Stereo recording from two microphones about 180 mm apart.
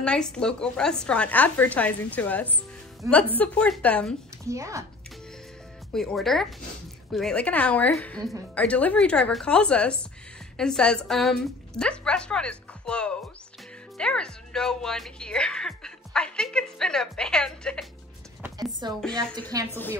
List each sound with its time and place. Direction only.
0.0 s a woman's voice: 5° left (ahead or behind)
3.0 s speech: 15° right (ahead or behind)
3.3 s a woman's voice: 5° left (ahead or behind)
4.5 s speech: 15° right (ahead or behind)
5.9 s a woman's voice: centre (ahead or behind)
18.6 s speech: 25° right (ahead or behind)
18.9 s speech: 5° left (ahead or behind)
19.5 s speech: 20° right (ahead or behind)